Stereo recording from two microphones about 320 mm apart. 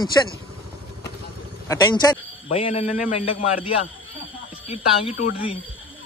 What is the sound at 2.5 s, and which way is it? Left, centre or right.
A man's voice, centre.